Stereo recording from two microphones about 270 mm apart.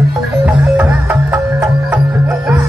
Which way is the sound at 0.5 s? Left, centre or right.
Centre.